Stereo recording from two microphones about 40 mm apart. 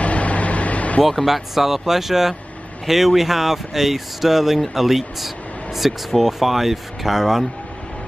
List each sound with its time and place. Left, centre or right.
0.0 s vehicle: left
1.0 s speech: centre